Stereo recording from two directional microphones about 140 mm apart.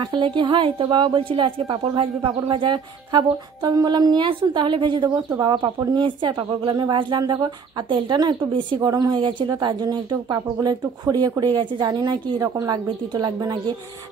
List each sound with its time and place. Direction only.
0.0 s a woman's voice: 35° right (ahead or behind)